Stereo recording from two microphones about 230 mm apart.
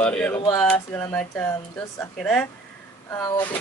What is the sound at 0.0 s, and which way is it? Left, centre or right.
A woman's voice, centre.